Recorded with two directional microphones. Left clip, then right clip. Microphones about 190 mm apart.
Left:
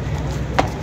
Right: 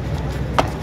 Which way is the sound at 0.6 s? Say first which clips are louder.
Even; 45° right (ahead or behind).